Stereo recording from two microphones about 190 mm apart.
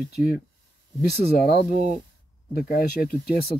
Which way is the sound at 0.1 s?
55° left (ahead or behind).